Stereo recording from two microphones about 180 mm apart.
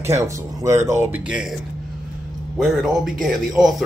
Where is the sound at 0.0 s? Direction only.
15° right (ahead or behind).